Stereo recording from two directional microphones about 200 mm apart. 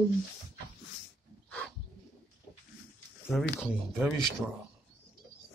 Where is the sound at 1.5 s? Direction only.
5° left (ahead or behind).